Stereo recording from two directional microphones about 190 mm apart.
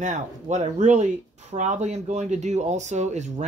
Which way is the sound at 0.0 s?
40° right (ahead or behind).